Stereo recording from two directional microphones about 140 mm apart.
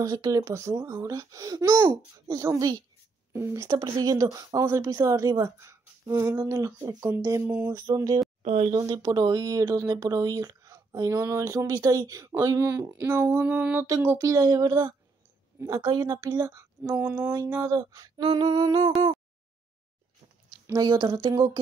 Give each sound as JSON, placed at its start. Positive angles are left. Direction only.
{"t": 0.0, "sound": "speech", "side_deg": -25}
{"t": 8.4, "sound": "speech", "side_deg": -55}
{"t": 8.7, "sound": "speech", "side_deg": -25}
{"t": 13.8, "sound": "speech", "side_deg": -25}
{"t": 20.6, "sound": "speech", "side_deg": -25}